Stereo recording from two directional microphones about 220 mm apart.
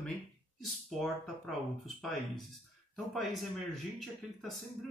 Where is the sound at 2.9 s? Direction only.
Centre (ahead or behind).